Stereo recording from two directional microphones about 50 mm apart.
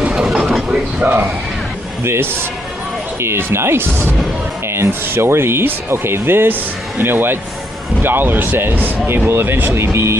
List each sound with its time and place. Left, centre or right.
0.0 s mechanisms: centre
0.3 s mechanisms: centre
0.7 s a sound: centre
1.0 s speech: right
3.2 s speech: right
9.3 s speech: right